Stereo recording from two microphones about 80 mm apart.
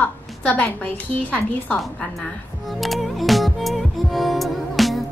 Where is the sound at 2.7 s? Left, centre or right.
Centre.